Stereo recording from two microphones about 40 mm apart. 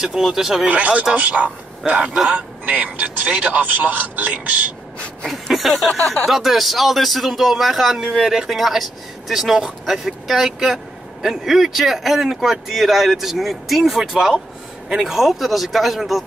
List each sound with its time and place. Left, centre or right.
0.0 s speech: centre
0.7 s speech: right
1.9 s speech: right
5.2 s speech: centre